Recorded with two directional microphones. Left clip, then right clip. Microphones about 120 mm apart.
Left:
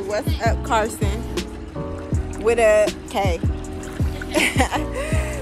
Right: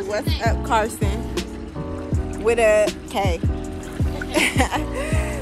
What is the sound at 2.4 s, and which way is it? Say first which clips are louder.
Speech: left 1 dB; 10° left (ahead or behind).